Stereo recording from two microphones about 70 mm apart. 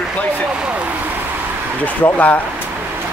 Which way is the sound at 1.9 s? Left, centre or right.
Left.